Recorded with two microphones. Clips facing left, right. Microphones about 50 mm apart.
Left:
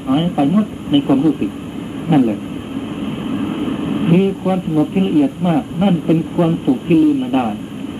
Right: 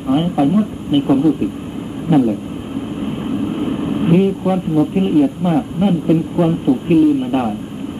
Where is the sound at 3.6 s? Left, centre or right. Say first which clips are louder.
Even; centre.